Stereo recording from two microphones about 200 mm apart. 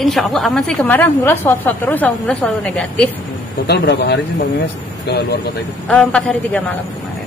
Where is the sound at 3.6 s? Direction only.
55° left (ahead or behind).